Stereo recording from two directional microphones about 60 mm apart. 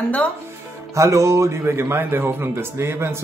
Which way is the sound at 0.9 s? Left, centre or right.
Right.